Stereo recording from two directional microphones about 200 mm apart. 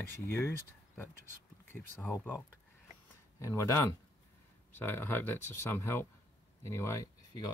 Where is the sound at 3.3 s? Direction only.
15° left (ahead or behind).